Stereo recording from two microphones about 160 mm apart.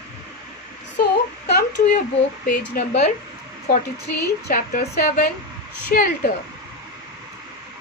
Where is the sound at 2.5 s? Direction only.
80° left.